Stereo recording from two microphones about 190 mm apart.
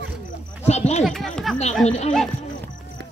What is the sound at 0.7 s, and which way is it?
Speech, 35° left (ahead or behind).